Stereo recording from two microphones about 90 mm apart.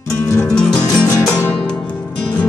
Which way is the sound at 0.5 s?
10° left (ahead or behind).